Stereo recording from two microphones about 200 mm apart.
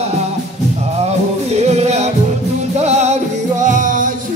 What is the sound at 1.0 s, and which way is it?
Music, 35° right (ahead or behind).